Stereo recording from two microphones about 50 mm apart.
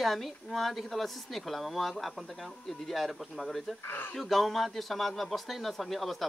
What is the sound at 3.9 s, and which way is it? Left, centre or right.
Speech, left.